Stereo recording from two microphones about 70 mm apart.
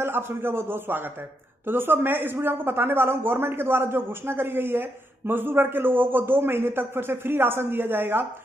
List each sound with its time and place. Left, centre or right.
0.0 s a man's voice: right